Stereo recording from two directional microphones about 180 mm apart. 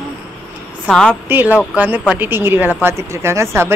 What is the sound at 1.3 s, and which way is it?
Speech, 10° right (ahead or behind).